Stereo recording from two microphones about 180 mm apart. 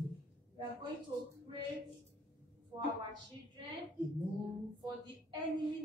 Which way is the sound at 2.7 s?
25° right (ahead or behind).